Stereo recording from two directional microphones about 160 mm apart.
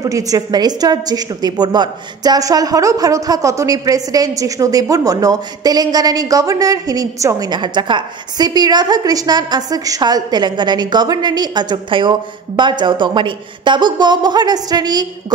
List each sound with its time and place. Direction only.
0.0 s a woman's voice: 20° right (ahead or behind)